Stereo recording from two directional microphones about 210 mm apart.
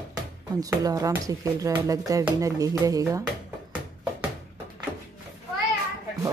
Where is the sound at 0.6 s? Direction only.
15° right (ahead or behind).